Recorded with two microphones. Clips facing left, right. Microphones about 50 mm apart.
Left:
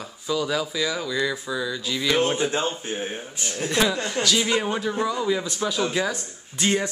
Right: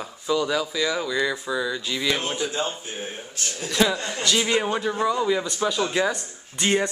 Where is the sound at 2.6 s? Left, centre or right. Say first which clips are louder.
Left 2 dB; centre.